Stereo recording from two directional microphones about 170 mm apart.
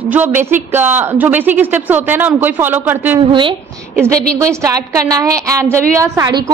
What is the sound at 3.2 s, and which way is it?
Speech, 30° right (ahead or behind).